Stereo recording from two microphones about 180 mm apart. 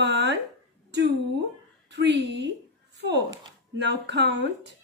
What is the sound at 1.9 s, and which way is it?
A woman's voice, 75° right (ahead or behind).